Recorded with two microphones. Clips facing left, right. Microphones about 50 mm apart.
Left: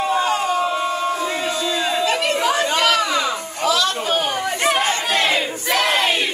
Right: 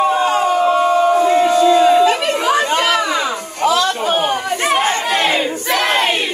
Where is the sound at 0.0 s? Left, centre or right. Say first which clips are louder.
Right 5 dB; centre.